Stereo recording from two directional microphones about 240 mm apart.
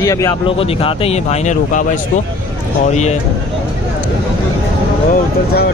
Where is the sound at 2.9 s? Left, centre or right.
Left.